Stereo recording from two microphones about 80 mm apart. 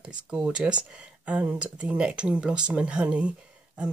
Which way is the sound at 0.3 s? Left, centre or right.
Centre.